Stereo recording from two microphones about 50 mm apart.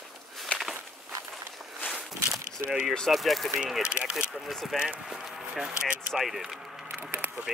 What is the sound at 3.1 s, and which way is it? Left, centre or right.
Speech, centre.